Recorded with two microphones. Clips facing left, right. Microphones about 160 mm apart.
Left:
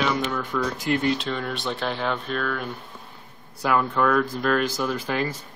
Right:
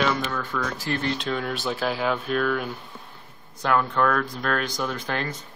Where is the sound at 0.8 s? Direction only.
15° left (ahead or behind).